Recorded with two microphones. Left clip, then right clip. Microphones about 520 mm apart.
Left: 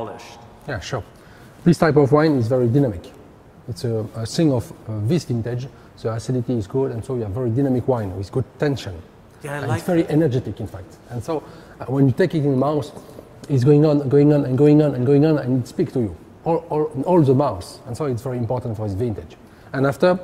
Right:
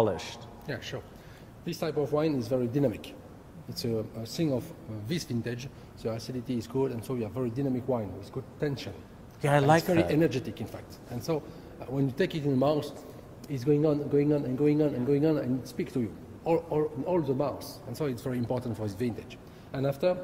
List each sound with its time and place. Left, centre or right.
0.0 s a man's voice: right
0.7 s a man's voice: left
7.9 s a man's voice: left
9.4 s a woman's voice: right
9.8 s a man's voice: left
19.7 s a man's voice: left